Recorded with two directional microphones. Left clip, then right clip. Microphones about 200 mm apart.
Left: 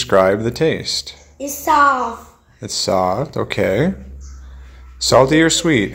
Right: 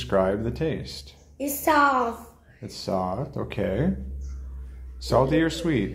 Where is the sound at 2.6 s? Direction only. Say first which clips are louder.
Left 11 dB; 30° left (ahead or behind).